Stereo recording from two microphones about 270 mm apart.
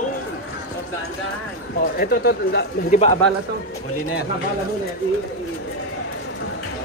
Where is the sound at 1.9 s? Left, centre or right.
Left.